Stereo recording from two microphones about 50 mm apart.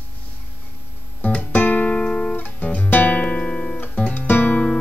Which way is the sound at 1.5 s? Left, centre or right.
Left.